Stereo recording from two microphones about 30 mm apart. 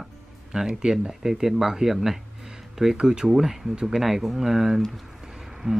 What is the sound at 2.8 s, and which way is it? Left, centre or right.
Speech, right.